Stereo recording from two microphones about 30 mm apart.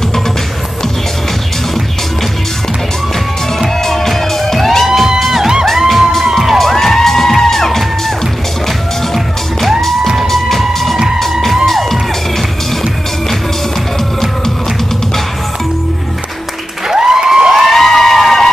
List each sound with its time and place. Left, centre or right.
3.8 s music: centre
4.8 s music: centre
6.2 s crowd: centre
6.6 s music: centre
9.8 s music: centre
11.6 s music: centre
16.9 s a sound: centre
17.6 s a sound: centre